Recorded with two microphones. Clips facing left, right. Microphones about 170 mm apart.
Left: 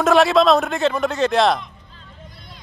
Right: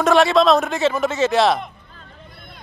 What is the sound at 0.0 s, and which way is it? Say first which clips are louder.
A man's voice: even; centre (ahead or behind).